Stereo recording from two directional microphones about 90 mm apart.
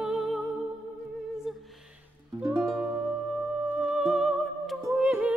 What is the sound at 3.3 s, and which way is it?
Music, 15° right (ahead or behind).